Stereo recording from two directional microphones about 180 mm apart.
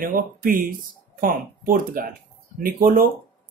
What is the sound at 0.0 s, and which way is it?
Speech, 50° right (ahead or behind).